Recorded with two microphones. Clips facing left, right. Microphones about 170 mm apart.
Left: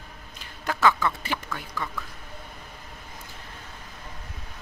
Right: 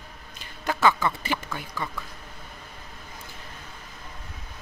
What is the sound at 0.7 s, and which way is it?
Speech, 5° right (ahead or behind).